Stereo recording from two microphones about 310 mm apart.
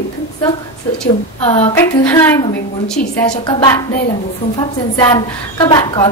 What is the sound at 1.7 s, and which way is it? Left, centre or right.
A woman's voice, centre.